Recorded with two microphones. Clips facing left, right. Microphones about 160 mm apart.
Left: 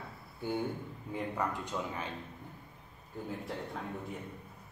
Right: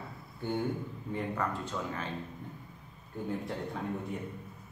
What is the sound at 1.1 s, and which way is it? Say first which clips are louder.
Speech: right 1 dB; 15° left (ahead or behind).